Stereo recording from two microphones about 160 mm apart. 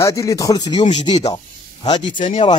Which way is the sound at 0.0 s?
20° left (ahead or behind).